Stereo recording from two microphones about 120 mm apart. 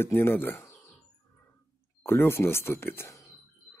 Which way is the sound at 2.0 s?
20° left (ahead or behind).